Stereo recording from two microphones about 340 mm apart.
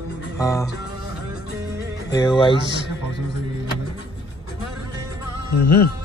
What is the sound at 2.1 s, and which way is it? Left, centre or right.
Speech, centre.